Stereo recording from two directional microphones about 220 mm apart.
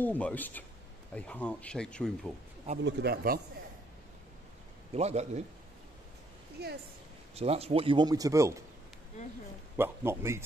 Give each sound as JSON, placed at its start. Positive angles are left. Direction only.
{"t": 0.0, "sound": "speech", "side_deg": 5}
{"t": 2.8, "sound": "a man's voice", "side_deg": -45}
{"t": 4.9, "sound": "a man's voice", "side_deg": -30}
{"t": 6.6, "sound": "a man's voice", "side_deg": -45}
{"t": 7.3, "sound": "a man's voice", "side_deg": -30}
{"t": 9.8, "sound": "a man's voice", "side_deg": -10}